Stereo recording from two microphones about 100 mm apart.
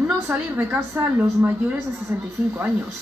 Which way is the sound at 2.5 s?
25° right (ahead or behind).